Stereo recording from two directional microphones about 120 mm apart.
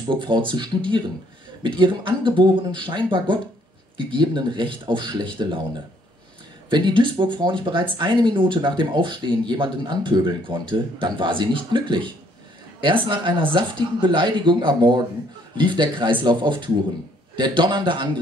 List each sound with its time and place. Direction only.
0.1 s speech: 40° right (ahead or behind)
6.7 s speech: 45° right (ahead or behind)
12.8 s speech: 40° right (ahead or behind)